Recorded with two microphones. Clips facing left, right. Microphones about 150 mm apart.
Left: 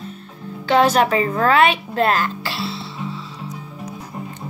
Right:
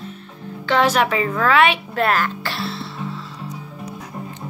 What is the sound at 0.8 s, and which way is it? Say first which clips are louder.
A woman's voice: left 2 dB; 35° left (ahead or behind).